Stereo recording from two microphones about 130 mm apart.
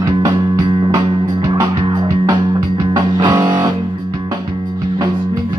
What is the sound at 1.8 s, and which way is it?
Music, 35° right (ahead or behind).